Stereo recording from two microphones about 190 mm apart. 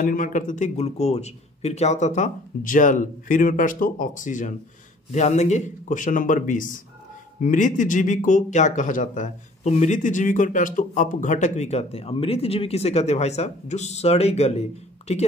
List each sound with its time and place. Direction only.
0.0 s speech: 45° left (ahead or behind)